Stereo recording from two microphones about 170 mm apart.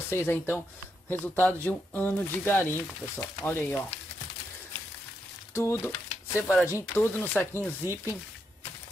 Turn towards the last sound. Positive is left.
turn(degrees=15)  # may be behind; listen again after turning